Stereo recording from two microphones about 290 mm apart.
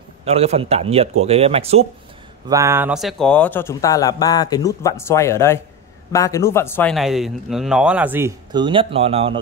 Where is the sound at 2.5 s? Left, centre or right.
Centre.